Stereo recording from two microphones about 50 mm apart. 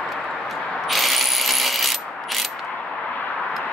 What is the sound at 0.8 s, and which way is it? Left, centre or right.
Ratchet, centre.